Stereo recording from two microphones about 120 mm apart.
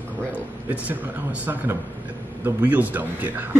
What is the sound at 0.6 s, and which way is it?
Speech, 15° right (ahead or behind).